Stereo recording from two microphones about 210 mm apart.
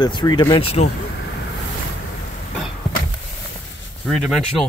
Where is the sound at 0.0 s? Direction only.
20° left (ahead or behind).